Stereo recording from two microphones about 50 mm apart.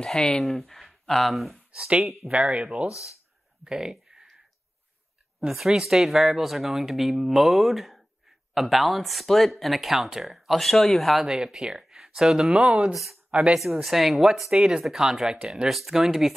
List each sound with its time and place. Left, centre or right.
0.0 s speech: centre
0.4 s speech: centre
1.7 s speech: centre
2.0 s speech: centre
2.3 s speech: right
2.9 s speech: left
3.6 s a sound: centre
5.6 s speech: centre
11.2 s speech: centre
12.4 s speech: centre
13.6 s speech: centre